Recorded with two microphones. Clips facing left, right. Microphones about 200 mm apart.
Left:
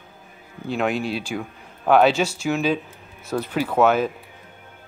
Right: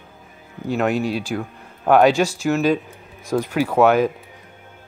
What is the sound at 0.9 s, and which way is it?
Speech, 40° right (ahead or behind).